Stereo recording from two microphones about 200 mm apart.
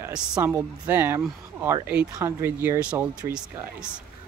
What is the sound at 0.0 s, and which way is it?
Speech, 5° right (ahead or behind).